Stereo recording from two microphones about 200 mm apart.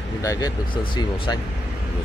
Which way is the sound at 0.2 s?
15° left (ahead or behind).